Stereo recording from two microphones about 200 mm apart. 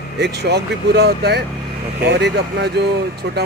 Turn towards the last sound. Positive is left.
turn(degrees=-60)  # may be behind; listen again after turning